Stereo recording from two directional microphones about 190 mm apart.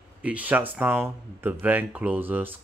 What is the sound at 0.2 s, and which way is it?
Speech, 5° right (ahead or behind).